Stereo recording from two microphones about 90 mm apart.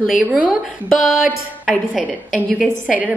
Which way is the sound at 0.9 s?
5° right (ahead or behind).